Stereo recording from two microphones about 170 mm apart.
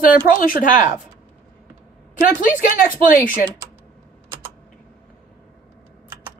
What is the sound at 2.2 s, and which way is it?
A woman's voice, 50° left (ahead or behind).